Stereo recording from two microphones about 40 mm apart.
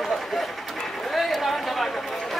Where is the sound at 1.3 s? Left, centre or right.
Centre.